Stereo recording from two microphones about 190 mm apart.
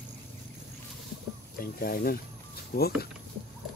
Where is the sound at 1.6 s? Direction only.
50° left (ahead or behind).